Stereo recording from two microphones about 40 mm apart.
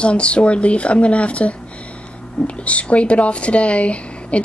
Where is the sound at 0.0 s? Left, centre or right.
Left.